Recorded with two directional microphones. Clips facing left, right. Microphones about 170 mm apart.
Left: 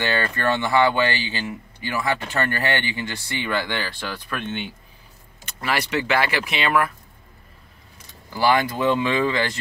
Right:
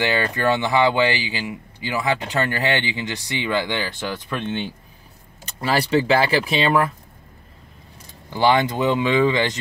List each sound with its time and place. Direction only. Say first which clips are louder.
0.0 s speech: right 2 dB; 15° right (ahead or behind)
8.3 s speech: right 2 dB; 20° right (ahead or behind)